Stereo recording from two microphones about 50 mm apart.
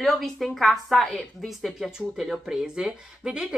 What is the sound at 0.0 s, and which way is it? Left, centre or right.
Speech, centre.